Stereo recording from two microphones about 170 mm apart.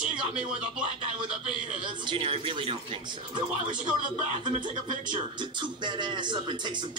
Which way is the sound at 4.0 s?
50° right (ahead or behind).